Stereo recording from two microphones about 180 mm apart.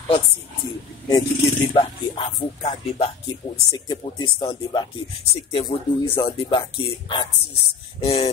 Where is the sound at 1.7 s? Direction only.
35° left (ahead or behind).